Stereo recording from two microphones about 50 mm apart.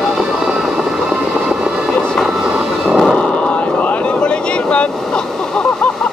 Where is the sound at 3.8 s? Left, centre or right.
Left.